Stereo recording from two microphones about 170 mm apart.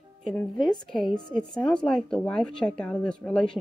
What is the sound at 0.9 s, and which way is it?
A woman's voice, centre (ahead or behind).